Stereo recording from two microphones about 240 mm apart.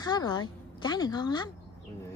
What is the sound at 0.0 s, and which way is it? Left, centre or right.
A woman's voice, centre.